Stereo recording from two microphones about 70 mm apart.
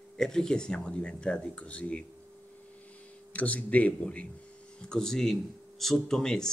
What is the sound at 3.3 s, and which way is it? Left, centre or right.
Speech, centre.